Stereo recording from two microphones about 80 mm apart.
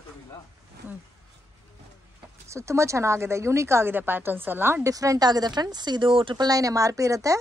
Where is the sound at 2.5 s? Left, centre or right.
Right.